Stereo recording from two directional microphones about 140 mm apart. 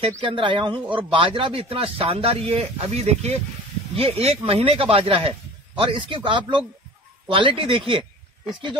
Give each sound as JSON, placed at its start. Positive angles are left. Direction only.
{"t": 0.2, "sound": "speech", "side_deg": -35}